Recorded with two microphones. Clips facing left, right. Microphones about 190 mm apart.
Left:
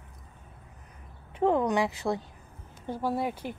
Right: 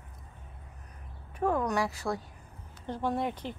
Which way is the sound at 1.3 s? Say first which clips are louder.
Left 4 dB; 25° left (ahead or behind).